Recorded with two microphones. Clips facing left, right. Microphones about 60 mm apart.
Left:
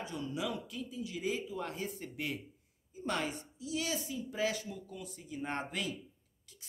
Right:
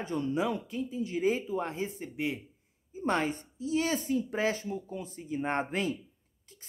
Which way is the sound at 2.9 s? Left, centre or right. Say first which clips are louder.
Right 6 dB; right.